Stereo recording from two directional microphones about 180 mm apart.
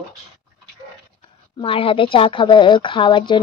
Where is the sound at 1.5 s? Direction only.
30° left (ahead or behind).